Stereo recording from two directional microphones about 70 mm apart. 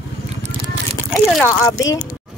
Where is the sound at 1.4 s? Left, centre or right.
Left.